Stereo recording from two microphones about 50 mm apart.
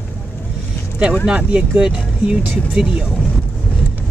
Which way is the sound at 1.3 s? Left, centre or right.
Right.